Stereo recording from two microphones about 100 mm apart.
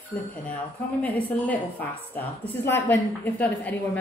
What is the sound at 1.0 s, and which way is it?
A woman's voice, 15° left (ahead or behind).